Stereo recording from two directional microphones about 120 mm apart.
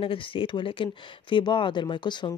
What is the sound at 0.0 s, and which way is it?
Speech, 45° left (ahead or behind).